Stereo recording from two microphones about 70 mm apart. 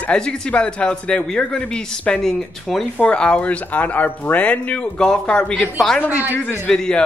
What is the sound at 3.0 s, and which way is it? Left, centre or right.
Speech, centre.